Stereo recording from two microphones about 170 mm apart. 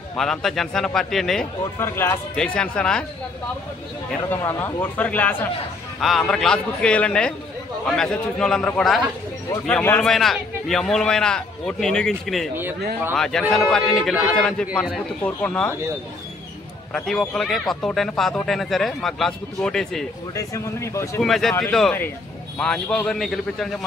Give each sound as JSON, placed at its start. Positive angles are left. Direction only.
{"t": 0.1, "sound": "speech", "side_deg": 0}
{"t": 1.8, "sound": "speech", "side_deg": 15}
{"t": 4.3, "sound": "speech", "side_deg": 15}
{"t": 16.9, "sound": "speech", "side_deg": 5}
{"t": 20.3, "sound": "speech", "side_deg": 15}
{"t": 21.2, "sound": "speech", "side_deg": 0}